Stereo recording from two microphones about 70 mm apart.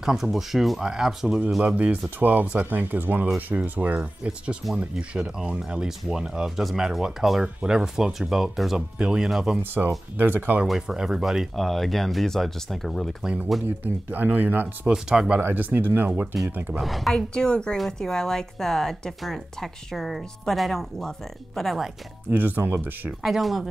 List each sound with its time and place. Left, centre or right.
0.0 s speech: centre
2.0 s speech: right; by 9.6 s centre
9.6 s speech: right
10.7 s speech: centre
13.7 s speech: right
14.9 s speech: centre
15.4 s speech: right
16.8 s speech: centre
17.3 s a woman's voice: centre
22.3 s speech: right
23.2 s speech: centre